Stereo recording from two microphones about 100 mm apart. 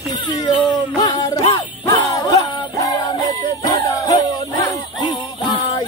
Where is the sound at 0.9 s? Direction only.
40° left (ahead or behind).